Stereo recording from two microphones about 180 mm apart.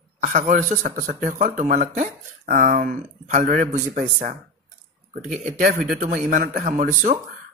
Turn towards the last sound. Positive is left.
turn(degrees=-50)  # may be behind; listen again after turning